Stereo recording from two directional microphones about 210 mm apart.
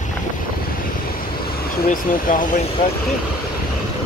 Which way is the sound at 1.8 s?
40° left (ahead or behind).